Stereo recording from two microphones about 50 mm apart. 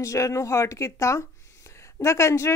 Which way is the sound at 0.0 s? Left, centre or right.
Left.